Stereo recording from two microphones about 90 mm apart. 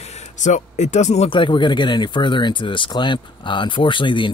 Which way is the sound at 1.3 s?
65° left (ahead or behind).